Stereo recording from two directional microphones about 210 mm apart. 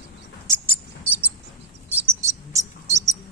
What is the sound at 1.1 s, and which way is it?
Cricket, 10° right (ahead or behind).